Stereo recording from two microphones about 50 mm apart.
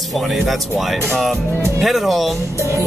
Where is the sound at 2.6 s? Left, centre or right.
Right.